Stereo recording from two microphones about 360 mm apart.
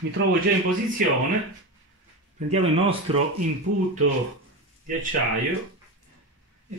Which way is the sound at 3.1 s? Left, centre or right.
Centre.